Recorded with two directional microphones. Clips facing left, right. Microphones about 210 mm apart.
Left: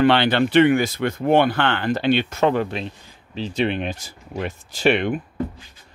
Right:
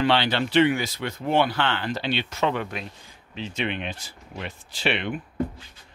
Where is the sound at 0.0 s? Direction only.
55° left (ahead or behind).